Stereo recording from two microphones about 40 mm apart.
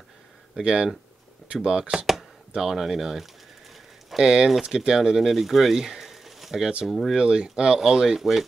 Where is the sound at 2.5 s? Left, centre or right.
Centre.